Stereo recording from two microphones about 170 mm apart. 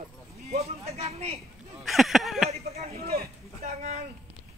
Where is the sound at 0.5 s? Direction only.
40° right (ahead or behind).